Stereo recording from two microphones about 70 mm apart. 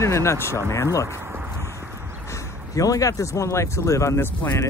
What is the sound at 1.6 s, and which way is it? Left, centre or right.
Clip-clop, right.